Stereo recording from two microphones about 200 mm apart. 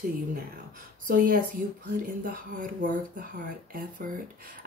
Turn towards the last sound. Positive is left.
turn(degrees=-45)  # may be behind; listen again after turning